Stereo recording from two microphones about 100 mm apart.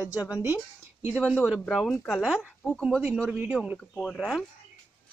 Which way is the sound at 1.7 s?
Centre (ahead or behind).